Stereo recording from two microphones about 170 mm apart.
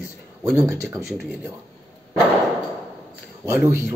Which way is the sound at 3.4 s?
15° right (ahead or behind).